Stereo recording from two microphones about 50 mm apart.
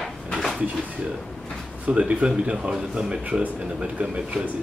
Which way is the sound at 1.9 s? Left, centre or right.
Right.